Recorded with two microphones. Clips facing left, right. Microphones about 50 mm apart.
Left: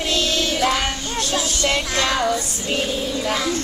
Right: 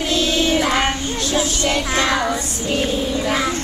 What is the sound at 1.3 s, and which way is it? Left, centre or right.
Music, right.